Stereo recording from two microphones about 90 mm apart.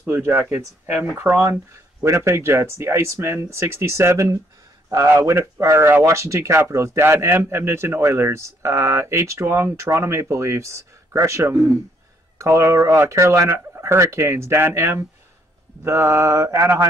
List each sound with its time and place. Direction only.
0.0 s speech: 20° right (ahead or behind)